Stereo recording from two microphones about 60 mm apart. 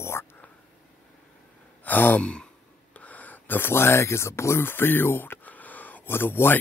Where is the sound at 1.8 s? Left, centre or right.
Left.